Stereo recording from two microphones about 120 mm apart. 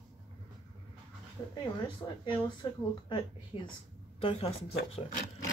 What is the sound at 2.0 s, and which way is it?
Speech, 25° left (ahead or behind).